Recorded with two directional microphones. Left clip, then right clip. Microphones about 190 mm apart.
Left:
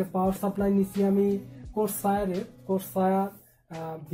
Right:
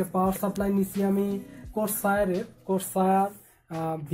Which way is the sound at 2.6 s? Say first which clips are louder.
Right 1 dB; 45° right (ahead or behind).